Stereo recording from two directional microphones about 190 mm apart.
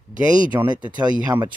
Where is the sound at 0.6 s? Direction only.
25° right (ahead or behind).